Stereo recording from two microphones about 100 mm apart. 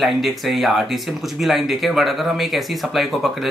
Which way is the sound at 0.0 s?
Centre (ahead or behind).